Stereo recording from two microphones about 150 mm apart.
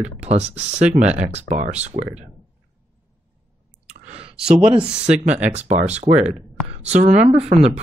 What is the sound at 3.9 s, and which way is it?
Clicking, 50° right (ahead or behind).